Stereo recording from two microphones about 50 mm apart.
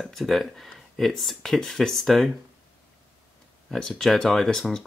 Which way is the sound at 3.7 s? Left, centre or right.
Centre.